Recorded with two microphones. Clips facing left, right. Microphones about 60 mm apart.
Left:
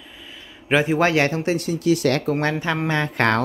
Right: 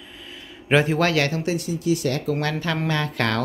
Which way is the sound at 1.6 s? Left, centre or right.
Left.